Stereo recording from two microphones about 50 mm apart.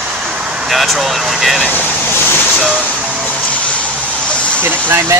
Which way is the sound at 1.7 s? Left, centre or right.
Left.